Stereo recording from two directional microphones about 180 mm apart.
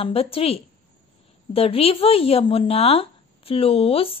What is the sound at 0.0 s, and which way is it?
Speech, 30° left (ahead or behind).